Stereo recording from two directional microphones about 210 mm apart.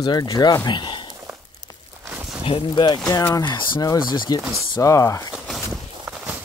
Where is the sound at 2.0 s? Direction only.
10° right (ahead or behind).